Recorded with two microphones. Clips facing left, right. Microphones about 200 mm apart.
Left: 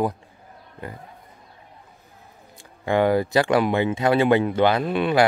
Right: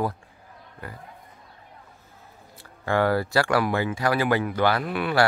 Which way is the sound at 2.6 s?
20° left (ahead or behind).